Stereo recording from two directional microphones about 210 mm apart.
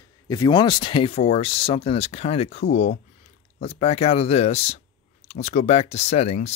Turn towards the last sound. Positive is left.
turn(degrees=30)  # may be behind; listen again after turning